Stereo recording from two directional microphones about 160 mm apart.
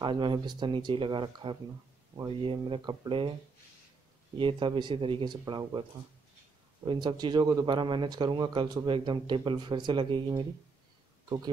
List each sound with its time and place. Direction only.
0.0 s speech: 30° right (ahead or behind)
4.4 s speech: 30° right (ahead or behind)